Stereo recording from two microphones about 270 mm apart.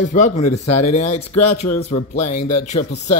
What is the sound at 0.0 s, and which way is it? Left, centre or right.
Speech, left.